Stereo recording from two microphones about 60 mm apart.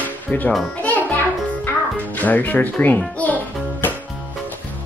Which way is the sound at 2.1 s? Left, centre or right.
Left.